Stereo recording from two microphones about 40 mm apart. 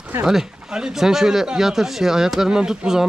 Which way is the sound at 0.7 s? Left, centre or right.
Centre.